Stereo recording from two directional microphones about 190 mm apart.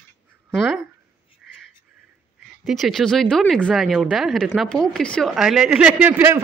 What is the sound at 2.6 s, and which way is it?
Speech, centre (ahead or behind).